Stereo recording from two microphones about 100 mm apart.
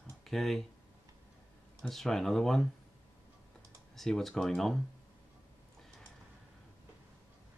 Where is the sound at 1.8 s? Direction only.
5° left (ahead or behind).